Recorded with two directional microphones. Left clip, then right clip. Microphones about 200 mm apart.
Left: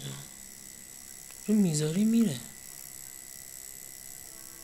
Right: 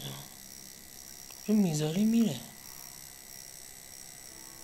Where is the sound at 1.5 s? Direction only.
35° left (ahead or behind).